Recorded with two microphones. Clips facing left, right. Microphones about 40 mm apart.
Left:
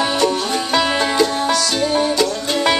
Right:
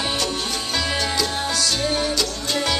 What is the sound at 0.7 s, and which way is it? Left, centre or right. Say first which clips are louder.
Music: left 8 dB; left.